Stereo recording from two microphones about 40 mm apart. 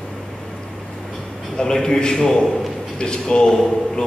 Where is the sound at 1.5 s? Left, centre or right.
Centre.